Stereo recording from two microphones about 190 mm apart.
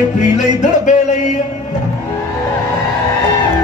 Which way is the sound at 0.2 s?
40° left (ahead or behind).